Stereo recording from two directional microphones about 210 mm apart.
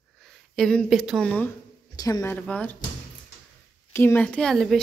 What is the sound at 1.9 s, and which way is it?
Speech, 15° left (ahead or behind).